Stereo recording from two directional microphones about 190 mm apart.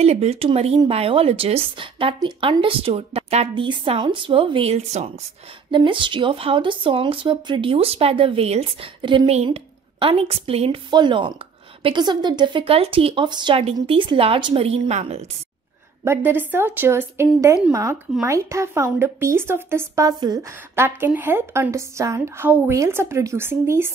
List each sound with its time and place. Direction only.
0.0 s speech: 35° right (ahead or behind)
16.3 s a woman's voice: 10° right (ahead or behind)